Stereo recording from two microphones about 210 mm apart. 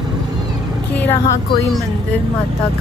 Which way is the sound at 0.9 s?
10° left (ahead or behind).